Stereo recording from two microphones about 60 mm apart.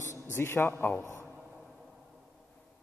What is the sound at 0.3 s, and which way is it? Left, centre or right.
Speech, left.